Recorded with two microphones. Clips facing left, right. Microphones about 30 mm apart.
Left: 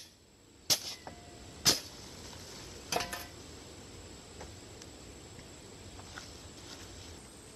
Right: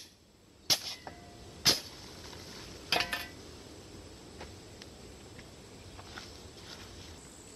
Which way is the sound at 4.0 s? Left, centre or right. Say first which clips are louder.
Right 1 dB; centre.